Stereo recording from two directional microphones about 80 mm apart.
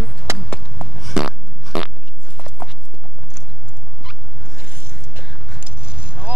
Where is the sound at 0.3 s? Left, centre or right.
Right.